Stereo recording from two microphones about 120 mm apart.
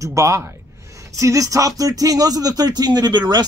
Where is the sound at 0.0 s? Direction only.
25° right (ahead or behind).